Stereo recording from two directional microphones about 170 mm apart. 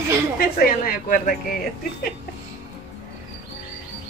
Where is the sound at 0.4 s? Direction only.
55° left (ahead or behind).